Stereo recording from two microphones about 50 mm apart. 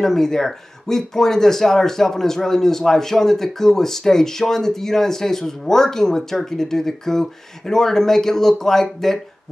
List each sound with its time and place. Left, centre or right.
0.0 s speech: centre